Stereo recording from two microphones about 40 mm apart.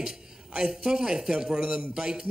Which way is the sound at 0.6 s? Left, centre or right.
Centre.